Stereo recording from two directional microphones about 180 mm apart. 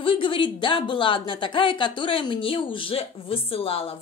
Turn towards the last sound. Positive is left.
turn(degrees=30)  # may be behind; listen again after turning